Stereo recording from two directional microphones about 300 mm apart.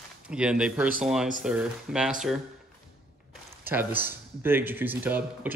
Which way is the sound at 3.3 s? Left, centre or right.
Centre.